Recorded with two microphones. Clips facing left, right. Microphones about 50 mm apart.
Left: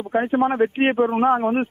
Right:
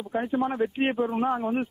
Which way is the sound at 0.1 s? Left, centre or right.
Left.